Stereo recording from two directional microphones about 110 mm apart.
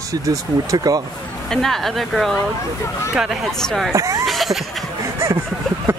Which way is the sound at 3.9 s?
30° right (ahead or behind).